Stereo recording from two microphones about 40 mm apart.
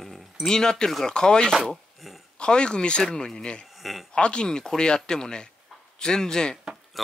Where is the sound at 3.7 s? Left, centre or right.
Centre.